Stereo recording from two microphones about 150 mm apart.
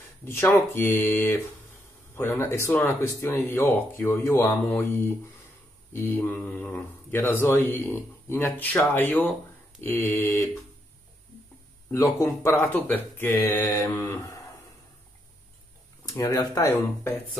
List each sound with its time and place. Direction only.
0.2 s speech: 15° left (ahead or behind)
11.9 s speech: 15° left (ahead or behind)
16.1 s speech: 20° left (ahead or behind)